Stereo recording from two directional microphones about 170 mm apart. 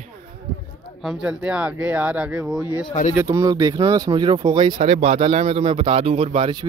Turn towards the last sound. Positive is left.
turn(degrees=-30)  # may be behind; listen again after turning